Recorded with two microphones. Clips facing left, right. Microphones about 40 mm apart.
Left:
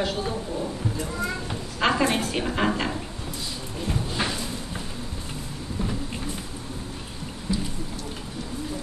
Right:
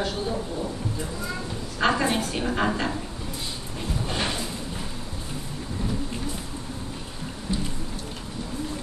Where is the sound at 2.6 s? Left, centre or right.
Centre.